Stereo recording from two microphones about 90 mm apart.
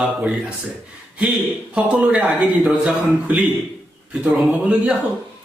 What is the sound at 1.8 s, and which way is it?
Speech, 15° right (ahead or behind).